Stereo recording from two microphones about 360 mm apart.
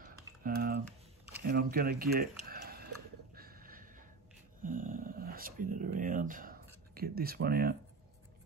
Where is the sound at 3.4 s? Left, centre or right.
Right.